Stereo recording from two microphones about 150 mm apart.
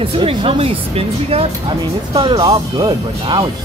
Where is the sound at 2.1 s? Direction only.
30° right (ahead or behind).